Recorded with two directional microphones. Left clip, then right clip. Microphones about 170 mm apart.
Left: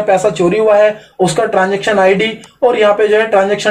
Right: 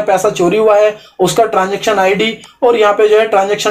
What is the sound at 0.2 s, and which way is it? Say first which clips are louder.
Speech: right 1 dB; 20° right (ahead or behind).